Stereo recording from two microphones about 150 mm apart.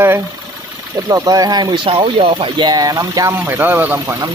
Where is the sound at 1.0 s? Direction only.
25° right (ahead or behind).